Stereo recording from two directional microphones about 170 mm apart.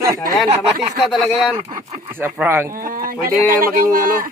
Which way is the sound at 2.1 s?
10° right (ahead or behind).